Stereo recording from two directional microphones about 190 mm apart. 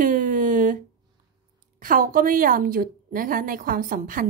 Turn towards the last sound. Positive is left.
turn(degrees=-45)  # may be behind; listen again after turning